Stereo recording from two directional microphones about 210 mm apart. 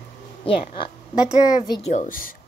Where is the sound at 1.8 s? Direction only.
40° left (ahead or behind).